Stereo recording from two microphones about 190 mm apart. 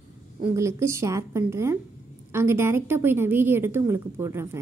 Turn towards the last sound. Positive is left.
turn(degrees=-15)  # may be behind; listen again after turning